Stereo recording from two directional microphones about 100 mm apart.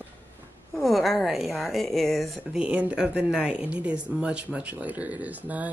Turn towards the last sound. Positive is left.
turn(degrees=-15)  # may be behind; listen again after turning